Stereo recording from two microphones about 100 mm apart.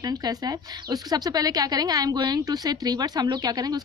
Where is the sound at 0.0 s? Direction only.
40° right (ahead or behind).